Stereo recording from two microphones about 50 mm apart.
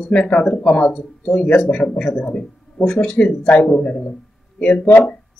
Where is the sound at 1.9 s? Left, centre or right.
Centre; by 5.2 s left.